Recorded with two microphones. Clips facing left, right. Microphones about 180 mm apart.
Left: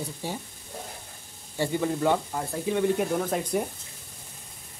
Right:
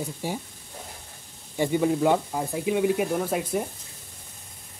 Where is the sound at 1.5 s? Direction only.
15° right (ahead or behind).